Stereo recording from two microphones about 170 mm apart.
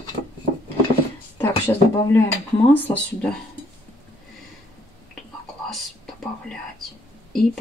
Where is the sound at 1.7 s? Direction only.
15° left (ahead or behind).